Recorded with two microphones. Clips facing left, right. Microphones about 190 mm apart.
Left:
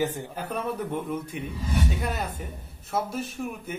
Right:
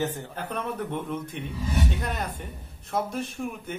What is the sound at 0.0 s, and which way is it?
Speech, 10° left (ahead or behind).